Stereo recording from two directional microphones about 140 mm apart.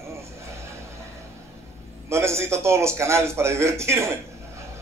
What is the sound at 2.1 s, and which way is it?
A man's voice, 20° right (ahead or behind).